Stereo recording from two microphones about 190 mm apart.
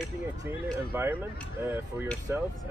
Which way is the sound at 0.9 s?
10° right (ahead or behind).